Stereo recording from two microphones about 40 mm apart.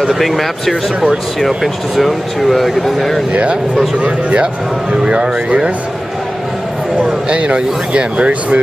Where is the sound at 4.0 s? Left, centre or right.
Right.